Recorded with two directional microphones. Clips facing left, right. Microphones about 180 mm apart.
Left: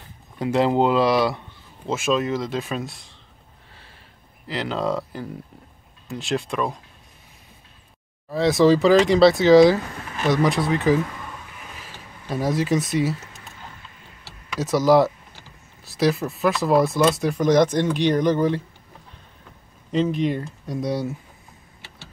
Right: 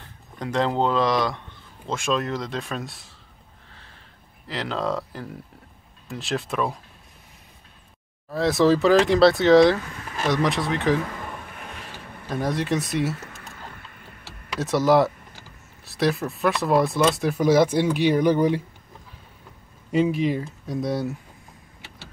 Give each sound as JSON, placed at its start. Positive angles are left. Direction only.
{"t": 0.4, "sound": "speech", "side_deg": 10}
{"t": 4.5, "sound": "speech", "side_deg": 0}
{"t": 8.3, "sound": "speech", "side_deg": 0}
{"t": 12.3, "sound": "speech", "side_deg": 5}
{"t": 13.2, "sound": "vehicle", "side_deg": -55}
{"t": 14.6, "sound": "speech", "side_deg": 0}
{"t": 19.9, "sound": "speech", "side_deg": -10}